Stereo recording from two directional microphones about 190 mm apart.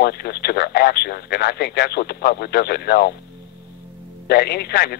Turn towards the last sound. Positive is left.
turn(degrees=55)  # may be behind; listen again after turning